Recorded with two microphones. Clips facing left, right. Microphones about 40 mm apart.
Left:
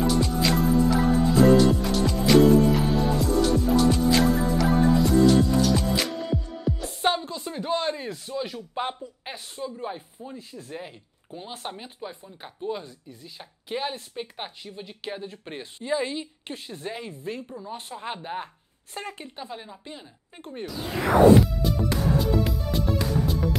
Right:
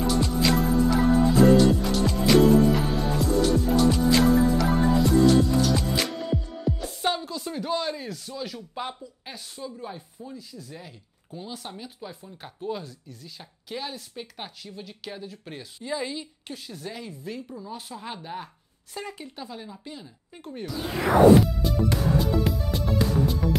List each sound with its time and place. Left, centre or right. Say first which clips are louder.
0.0 s music: even; centre
7.0 s music: left 5 dB; left
7.7 s speech: left 3 dB; left
9.8 s chopping: left 3 dB; left
11.7 s speech: left 1 dB; left
14.3 s speech: left 2 dB; left
18.9 s chopping: even; left
19.2 s speech: left 1 dB; left
21.4 s music: even; centre